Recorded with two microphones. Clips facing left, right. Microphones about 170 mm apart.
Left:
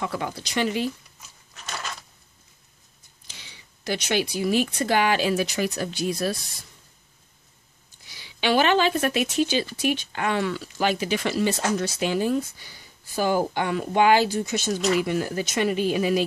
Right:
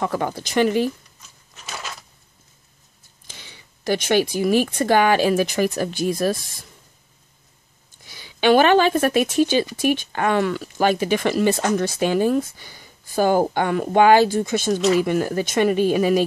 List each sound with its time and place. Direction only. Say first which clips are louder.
0.0 s speech: right 6 dB; 45° right (ahead or behind)
1.5 s a sound: right 1 dB; 5° right (ahead or behind)
3.3 s speech: right 4 dB; 50° right (ahead or behind)
8.1 s speech: right 7 dB; 50° right (ahead or behind)